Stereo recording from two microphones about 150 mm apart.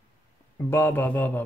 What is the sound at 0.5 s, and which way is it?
Mantra, 15° left (ahead or behind).